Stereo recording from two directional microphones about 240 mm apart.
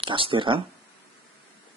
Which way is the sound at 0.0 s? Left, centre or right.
Right.